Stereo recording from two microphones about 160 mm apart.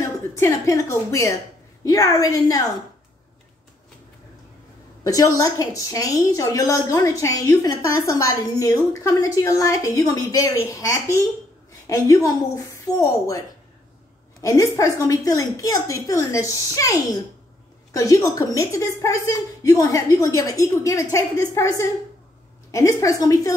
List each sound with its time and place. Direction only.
0.0 s a woman's voice: 20° left (ahead or behind)
5.0 s a woman's voice: 20° left (ahead or behind)
14.4 s a woman's voice: 20° left (ahead or behind)